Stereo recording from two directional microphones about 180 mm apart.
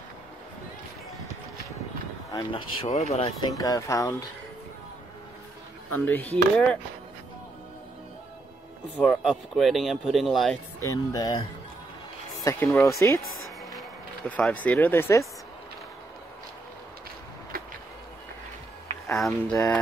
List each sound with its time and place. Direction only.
2.3 s speech: 30° left (ahead or behind)
3.5 s speech: 20° left (ahead or behind)
5.9 s speech: 10° left (ahead or behind)
8.9 s speech: 5° left (ahead or behind)
10.8 s speech: 20° left (ahead or behind)
12.7 s speech: 15° left (ahead or behind)
13.7 s speech: 5° left (ahead or behind)
19.1 s speech: centre (ahead or behind)